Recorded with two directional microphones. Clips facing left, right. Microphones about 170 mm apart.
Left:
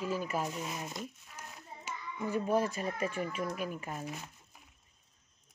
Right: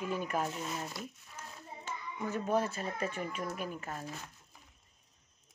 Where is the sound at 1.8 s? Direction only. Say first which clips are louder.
Left 1 dB; 10° left (ahead or behind).